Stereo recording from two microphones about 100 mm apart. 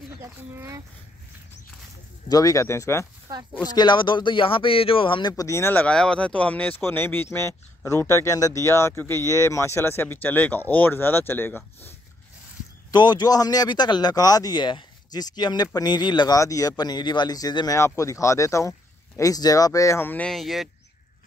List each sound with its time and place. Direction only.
0.2 s speech: 25° right (ahead or behind)
2.2 s speech: 40° left (ahead or behind)
3.6 s speech: 45° left (ahead or behind)
5.4 s speech: 25° left (ahead or behind)
5.8 s speech: 10° left (ahead or behind)
12.9 s speech: 45° left (ahead or behind)
16.3 s speech: 35° left (ahead or behind)
20.2 s speech: centre (ahead or behind)